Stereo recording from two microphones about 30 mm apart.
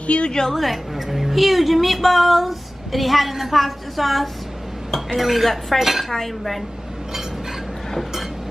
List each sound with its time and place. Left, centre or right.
0.0 s a woman's voice: left
0.5 s female singing: centre
6.1 s cutlery: centre